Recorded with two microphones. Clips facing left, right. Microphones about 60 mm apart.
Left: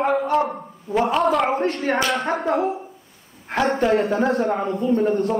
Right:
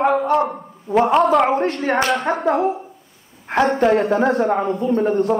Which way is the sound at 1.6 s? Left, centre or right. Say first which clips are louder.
Right 2 dB; right.